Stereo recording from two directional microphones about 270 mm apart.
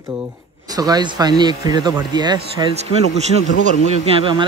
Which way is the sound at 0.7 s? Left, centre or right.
Centre.